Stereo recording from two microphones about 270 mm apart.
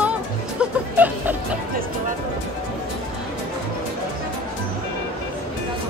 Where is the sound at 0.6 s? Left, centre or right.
Centre.